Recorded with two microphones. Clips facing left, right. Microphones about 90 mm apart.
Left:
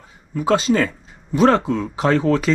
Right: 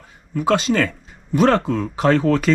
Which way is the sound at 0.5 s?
40° left (ahead or behind).